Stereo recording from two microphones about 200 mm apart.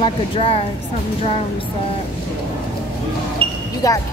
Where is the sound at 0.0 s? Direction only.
30° left (ahead or behind).